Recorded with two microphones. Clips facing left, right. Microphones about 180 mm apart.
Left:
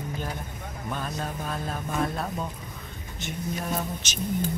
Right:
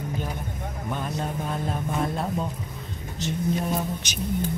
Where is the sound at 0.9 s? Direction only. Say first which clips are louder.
Right 2 dB; 20° right (ahead or behind).